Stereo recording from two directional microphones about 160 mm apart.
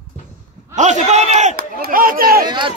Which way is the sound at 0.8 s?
45° right (ahead or behind).